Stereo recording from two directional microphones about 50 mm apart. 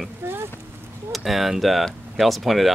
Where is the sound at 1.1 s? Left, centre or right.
Centre.